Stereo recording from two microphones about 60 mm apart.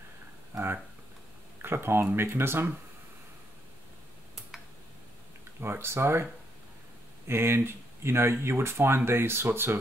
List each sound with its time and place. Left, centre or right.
1.6 s speech: right
5.6 s speech: right
7.2 s speech: right